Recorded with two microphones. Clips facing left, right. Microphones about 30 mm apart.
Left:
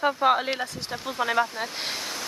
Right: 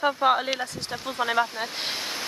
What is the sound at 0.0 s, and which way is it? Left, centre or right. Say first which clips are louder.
Speech: even; centre.